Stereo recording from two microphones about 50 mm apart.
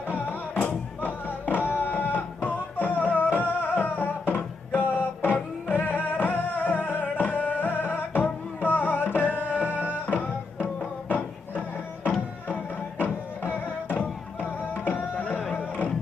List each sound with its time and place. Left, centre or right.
0.1 s music: left
13.0 s music: left